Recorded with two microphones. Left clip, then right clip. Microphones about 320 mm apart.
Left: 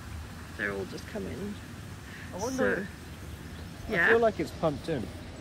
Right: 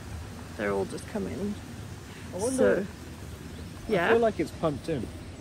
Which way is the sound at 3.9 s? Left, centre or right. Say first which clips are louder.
Even; centre.